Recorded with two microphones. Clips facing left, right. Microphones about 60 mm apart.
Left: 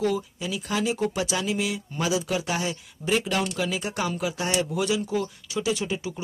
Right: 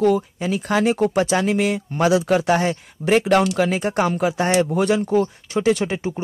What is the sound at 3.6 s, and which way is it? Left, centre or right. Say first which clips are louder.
Speech: right 8 dB; right.